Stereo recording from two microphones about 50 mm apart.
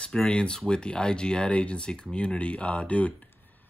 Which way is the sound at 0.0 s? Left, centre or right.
Centre.